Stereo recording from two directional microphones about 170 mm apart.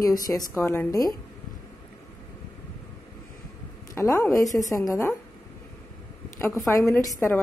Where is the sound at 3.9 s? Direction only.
15° left (ahead or behind).